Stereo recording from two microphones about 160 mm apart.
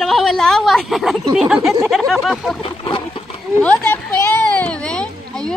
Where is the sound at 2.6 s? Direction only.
30° left (ahead or behind).